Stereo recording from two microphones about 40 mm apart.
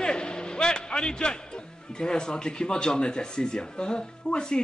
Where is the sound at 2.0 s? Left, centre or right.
Centre.